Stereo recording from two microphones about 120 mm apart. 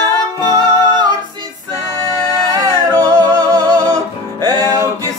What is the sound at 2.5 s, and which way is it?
Music, 30° right (ahead or behind).